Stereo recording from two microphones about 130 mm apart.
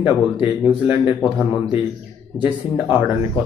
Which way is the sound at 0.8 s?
40° left (ahead or behind).